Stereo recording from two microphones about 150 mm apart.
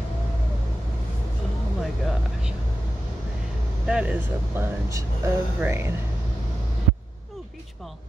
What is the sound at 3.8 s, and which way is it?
Speech, 5° right (ahead or behind).